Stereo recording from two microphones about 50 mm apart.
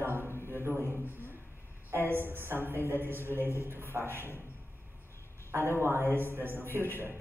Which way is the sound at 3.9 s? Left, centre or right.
Right.